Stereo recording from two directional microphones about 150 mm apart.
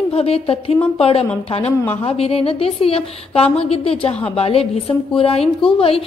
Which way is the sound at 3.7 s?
40° left (ahead or behind).